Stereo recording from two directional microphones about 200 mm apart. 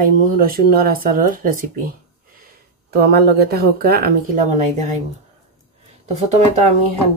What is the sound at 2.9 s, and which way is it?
Speech, 50° right (ahead or behind).